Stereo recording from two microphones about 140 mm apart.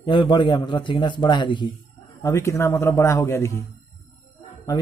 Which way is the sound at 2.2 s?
20° left (ahead or behind).